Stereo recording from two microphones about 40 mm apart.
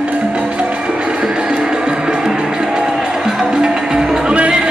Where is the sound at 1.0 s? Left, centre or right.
Right.